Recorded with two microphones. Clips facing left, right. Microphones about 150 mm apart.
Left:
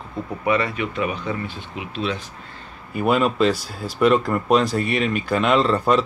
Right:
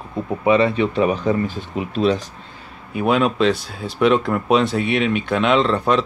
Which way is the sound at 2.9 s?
Centre (ahead or behind).